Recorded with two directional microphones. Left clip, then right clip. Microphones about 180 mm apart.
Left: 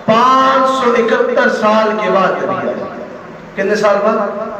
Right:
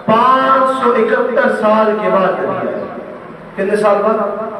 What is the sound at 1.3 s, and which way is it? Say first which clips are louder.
Speech: left 1 dB; 35° left (ahead or behind).